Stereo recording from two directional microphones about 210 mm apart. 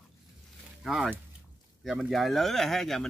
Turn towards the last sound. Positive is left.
turn(degrees=0)  # may be behind; listen again after turning